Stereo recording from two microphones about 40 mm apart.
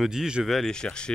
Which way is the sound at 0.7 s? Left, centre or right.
Centre.